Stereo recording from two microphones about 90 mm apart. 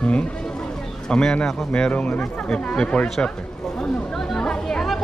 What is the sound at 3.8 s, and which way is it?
Chatter, 5° left (ahead or behind).